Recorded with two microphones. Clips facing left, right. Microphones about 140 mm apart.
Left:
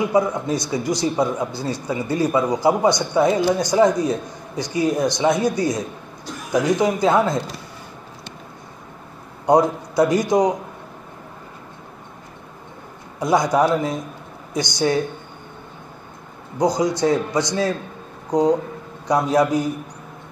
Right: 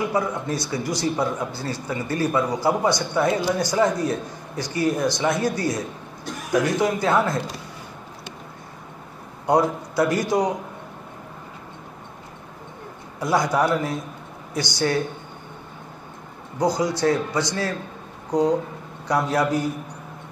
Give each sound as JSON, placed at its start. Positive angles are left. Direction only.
{"t": 0.1, "sound": "a man's voice", "side_deg": 15}
{"t": 9.5, "sound": "a man's voice", "side_deg": 15}
{"t": 13.2, "sound": "a man's voice", "side_deg": 20}
{"t": 16.5, "sound": "a man's voice", "side_deg": 15}